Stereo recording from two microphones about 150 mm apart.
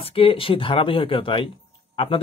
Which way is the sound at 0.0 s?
40° left (ahead or behind).